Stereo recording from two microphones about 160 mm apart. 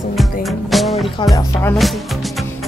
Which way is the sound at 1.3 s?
15° left (ahead or behind).